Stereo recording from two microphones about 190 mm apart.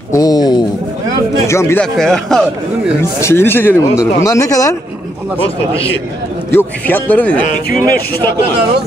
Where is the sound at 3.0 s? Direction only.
15° left (ahead or behind).